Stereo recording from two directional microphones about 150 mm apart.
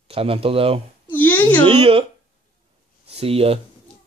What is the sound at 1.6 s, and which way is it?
Speech, 40° right (ahead or behind).